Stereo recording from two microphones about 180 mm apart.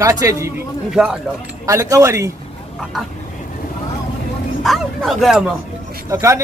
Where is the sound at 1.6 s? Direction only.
15° right (ahead or behind).